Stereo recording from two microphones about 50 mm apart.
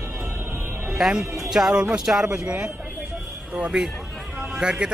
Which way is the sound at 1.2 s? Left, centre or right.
Right.